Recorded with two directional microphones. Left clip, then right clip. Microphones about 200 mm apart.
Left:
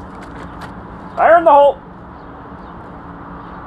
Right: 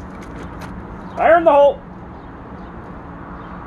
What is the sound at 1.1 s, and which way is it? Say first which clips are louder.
Speech: left 3 dB; 45° right (ahead or behind).